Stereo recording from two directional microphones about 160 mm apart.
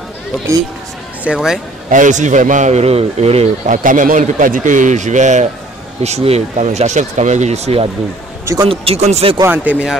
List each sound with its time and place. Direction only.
1.2 s speech: 5° right (ahead or behind)
1.9 s a man's voice: 50° right (ahead or behind)
9.4 s speech: 10° right (ahead or behind)